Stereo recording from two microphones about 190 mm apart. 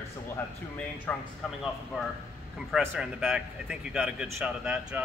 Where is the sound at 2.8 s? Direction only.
5° right (ahead or behind).